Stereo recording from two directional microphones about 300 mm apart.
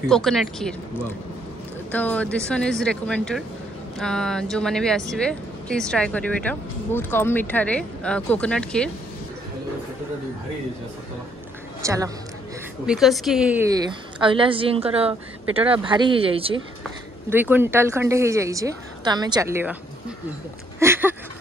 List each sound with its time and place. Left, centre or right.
0.1 s speech: centre
11.8 s a woman's voice: centre
17.3 s a woman's voice: centre
20.8 s a sound: centre